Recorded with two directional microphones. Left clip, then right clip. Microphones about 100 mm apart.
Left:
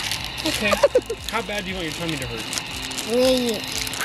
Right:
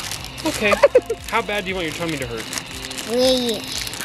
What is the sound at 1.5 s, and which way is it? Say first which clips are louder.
Speech: right 4 dB; 25° right (ahead or behind).